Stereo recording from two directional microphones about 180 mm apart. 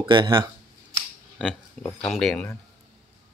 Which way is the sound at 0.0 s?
25° right (ahead or behind).